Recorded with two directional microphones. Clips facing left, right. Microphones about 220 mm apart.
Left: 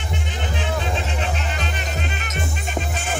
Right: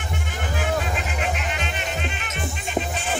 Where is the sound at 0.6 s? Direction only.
30° left (ahead or behind).